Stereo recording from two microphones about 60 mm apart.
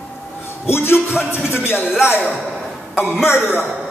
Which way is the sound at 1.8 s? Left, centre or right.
Centre.